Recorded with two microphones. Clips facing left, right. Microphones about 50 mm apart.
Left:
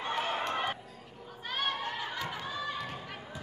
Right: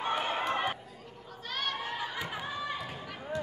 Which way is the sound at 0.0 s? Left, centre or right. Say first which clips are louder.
Right 2 dB; centre.